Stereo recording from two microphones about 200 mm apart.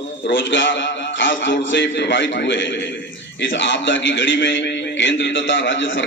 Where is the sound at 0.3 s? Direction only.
65° left (ahead or behind).